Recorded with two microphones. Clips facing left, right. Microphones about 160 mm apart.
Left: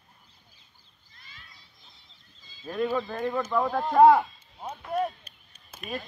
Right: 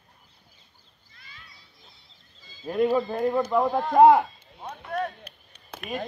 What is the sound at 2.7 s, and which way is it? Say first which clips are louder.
Speech: right 5 dB; 30° right (ahead or behind).